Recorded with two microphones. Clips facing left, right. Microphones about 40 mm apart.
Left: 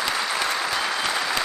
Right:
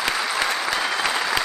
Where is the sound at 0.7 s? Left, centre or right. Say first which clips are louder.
Right 2 dB; centre.